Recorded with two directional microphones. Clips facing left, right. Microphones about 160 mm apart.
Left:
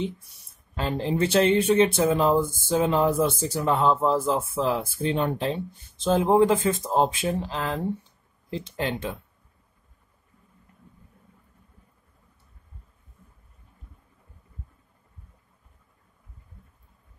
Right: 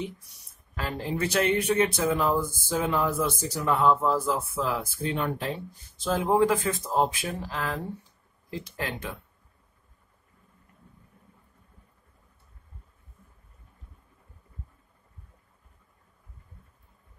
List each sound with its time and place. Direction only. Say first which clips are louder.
0.7 s speech: left 5 dB; 25° left (ahead or behind)